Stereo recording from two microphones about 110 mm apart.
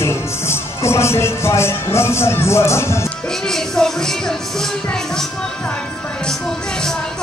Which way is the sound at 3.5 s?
5° left (ahead or behind).